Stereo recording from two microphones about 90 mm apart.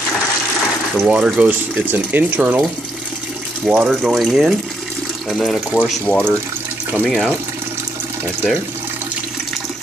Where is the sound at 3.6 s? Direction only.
10° right (ahead or behind).